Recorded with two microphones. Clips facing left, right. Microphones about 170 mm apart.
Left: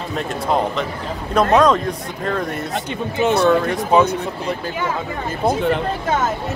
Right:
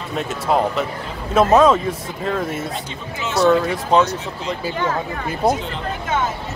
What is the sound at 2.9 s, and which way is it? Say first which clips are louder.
Speech: left 8 dB; 55° left (ahead or behind).